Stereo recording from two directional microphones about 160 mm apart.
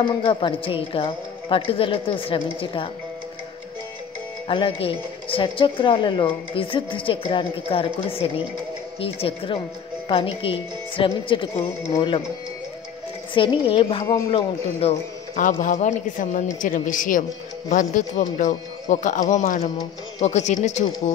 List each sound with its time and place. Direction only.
0.0 s speech: 30° left (ahead or behind)
4.5 s speech: 35° left (ahead or behind)
13.3 s speech: 30° left (ahead or behind)
15.4 s a woman's voice: 50° left (ahead or behind)